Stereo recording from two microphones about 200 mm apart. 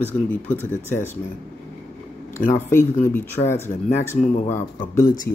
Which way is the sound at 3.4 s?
10° left (ahead or behind).